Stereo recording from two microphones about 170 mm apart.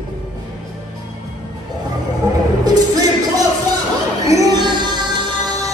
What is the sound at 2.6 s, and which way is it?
Music, 20° right (ahead or behind).